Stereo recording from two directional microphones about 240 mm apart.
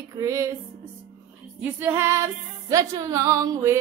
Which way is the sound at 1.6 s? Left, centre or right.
Centre.